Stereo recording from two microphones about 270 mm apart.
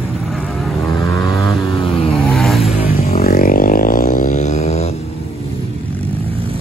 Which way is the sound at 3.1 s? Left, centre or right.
Left.